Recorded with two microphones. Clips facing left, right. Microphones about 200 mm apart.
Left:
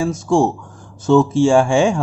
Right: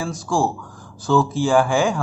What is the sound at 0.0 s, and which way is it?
A man's voice, 25° left (ahead or behind).